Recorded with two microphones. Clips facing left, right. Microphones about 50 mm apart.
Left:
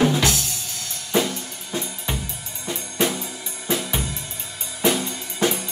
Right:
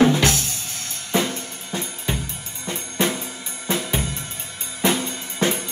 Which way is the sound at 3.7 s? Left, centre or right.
Right.